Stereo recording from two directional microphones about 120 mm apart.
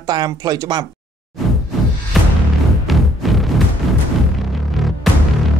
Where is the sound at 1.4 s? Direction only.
Centre (ahead or behind).